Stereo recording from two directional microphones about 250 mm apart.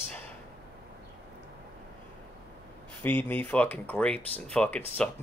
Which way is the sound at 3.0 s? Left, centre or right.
Centre.